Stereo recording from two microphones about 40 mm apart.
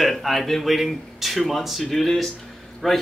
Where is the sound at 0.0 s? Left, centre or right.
Centre.